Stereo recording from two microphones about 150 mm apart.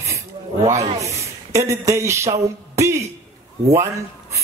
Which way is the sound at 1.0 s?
20° right (ahead or behind).